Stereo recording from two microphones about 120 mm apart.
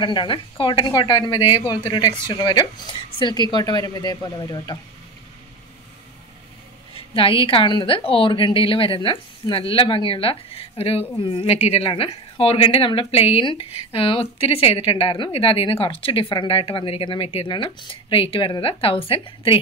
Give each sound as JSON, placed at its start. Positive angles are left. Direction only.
{"t": 0.0, "sound": "a woman's voice", "side_deg": 40}
{"t": 6.9, "sound": "a woman's voice", "side_deg": 50}
{"t": 11.2, "sound": "a woman's voice", "side_deg": 45}
{"t": 11.5, "sound": "a woman's voice", "side_deg": 60}